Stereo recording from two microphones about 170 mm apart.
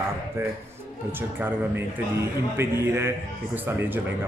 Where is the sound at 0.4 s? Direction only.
15° right (ahead or behind).